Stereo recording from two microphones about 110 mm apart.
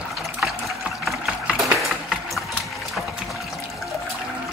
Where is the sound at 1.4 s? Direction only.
5° right (ahead or behind).